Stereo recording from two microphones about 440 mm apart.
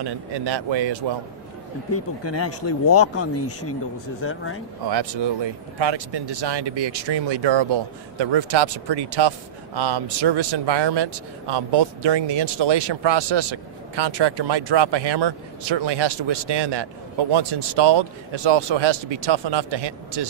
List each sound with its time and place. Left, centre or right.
0.0 s speech: right
1.9 s speech: left
4.8 s speech: right